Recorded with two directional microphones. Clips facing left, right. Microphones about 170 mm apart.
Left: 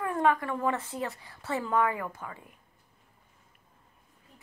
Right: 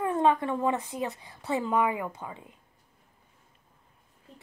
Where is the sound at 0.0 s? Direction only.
20° right (ahead or behind).